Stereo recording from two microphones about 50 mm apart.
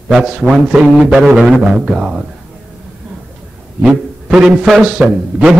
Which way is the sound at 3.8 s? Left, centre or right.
Centre.